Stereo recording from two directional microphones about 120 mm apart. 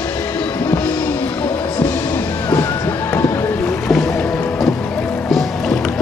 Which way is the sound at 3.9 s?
5° left (ahead or behind).